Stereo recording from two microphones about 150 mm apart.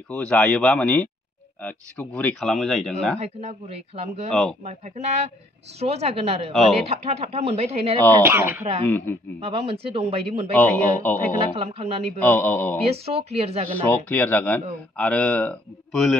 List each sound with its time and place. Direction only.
0.1 s speech: 5° left (ahead or behind)
3.2 s speech: 45° right (ahead or behind)
4.3 s speech: centre (ahead or behind)
4.6 s speech: 50° right (ahead or behind)
8.2 s speech: 15° right (ahead or behind)
8.8 s speech: 10° left (ahead or behind)
9.4 s a man's voice: 40° right (ahead or behind)
10.5 s speech: 10° left (ahead or behind)
11.5 s a man's voice: 40° right (ahead or behind)
12.3 s speech: 10° left (ahead or behind)
12.9 s speech: 40° right (ahead or behind)
13.7 s speech: 10° left (ahead or behind)